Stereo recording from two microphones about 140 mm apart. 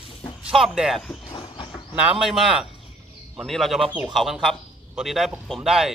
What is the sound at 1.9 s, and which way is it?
A man's voice, 10° right (ahead or behind).